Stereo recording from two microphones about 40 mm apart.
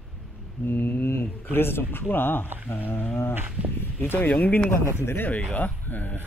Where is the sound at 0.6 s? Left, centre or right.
Left.